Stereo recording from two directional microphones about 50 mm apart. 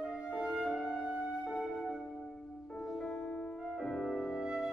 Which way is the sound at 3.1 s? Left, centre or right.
Left.